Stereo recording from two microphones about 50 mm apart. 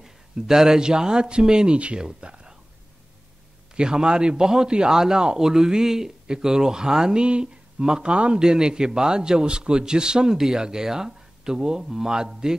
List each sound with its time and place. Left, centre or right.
0.0 s a man's voice: centre
3.7 s a man's voice: centre